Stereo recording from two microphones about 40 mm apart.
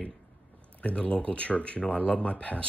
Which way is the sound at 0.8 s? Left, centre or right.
Left.